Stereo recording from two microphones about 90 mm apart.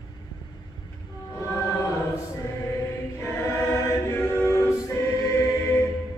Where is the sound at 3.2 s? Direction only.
25° left (ahead or behind).